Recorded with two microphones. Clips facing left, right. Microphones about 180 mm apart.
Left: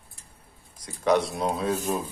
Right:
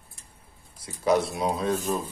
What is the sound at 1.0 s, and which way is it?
Speech, centre (ahead or behind).